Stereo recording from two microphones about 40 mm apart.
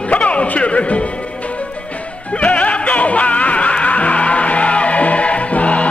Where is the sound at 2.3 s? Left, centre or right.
Left.